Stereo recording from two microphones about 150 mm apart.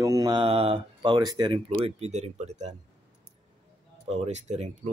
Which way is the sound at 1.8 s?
45° right (ahead or behind).